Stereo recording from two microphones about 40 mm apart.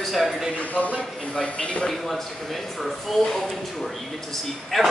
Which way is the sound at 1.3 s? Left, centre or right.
Centre.